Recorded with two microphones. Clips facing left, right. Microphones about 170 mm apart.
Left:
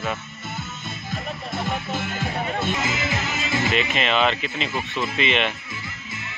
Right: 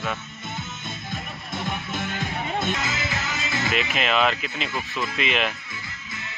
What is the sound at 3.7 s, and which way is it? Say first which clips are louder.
Speech: right 1 dB; centre (ahead or behind).